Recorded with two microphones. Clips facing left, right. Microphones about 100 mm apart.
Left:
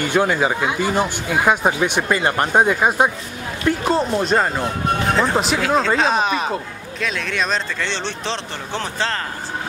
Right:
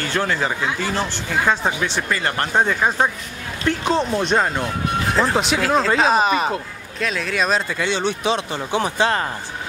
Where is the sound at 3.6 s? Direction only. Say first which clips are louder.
Left 1 dB; 5° left (ahead or behind); by 9.2 s 15° right (ahead or behind).